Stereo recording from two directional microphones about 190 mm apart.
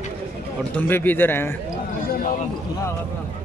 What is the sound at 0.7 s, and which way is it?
Speech, 10° left (ahead or behind).